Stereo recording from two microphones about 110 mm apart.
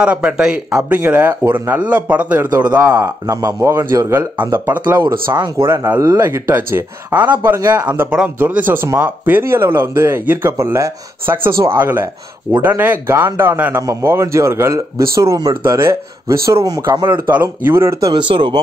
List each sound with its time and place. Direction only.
0.0 s speech: 10° right (ahead or behind)
2.9 s speech: 30° right (ahead or behind)
4.5 s speech: 15° right (ahead or behind)
5.3 s speech: 45° right (ahead or behind)
5.9 s speech: 30° right (ahead or behind)
7.5 s speech: 35° right (ahead or behind)
7.8 s speech: 20° right (ahead or behind)
18.3 s speech: 50° right (ahead or behind)